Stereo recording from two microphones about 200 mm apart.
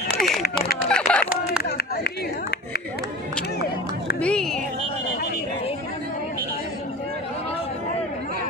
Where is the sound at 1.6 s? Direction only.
55° left (ahead or behind).